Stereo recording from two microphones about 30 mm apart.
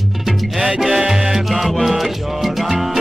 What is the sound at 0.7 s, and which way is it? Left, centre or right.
Music, centre.